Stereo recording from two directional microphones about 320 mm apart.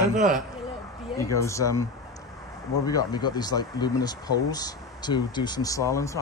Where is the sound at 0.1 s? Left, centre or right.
Right.